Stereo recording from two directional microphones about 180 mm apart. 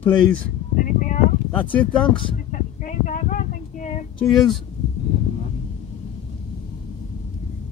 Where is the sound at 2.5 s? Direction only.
45° left (ahead or behind).